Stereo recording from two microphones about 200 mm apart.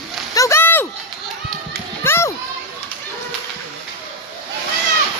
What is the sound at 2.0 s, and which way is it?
Children playing, 10° left (ahead or behind).